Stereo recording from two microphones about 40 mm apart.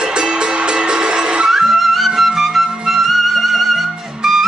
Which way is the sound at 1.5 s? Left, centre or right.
Centre.